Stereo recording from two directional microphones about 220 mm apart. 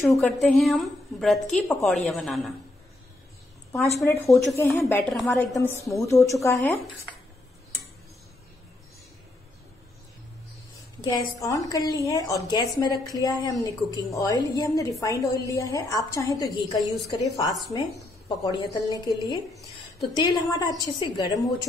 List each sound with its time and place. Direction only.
0.2 s a woman's voice: centre (ahead or behind)
4.0 s a woman's voice: 10° left (ahead or behind)
4.4 s a woman's voice: centre (ahead or behind)
11.0 s a woman's voice: 15° left (ahead or behind)
16.9 s a woman's voice: centre (ahead or behind)
18.4 s a woman's voice: 15° left (ahead or behind)